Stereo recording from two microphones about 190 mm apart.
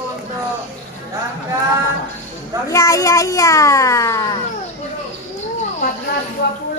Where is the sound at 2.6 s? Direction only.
15° left (ahead or behind).